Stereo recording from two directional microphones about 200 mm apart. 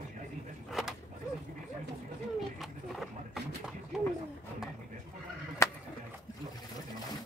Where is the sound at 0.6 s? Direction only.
Centre (ahead or behind).